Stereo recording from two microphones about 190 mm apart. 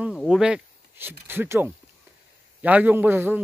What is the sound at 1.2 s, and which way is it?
Speech, 10° right (ahead or behind).